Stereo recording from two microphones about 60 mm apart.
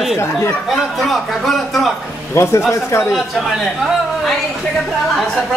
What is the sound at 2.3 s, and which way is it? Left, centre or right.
Speech, left.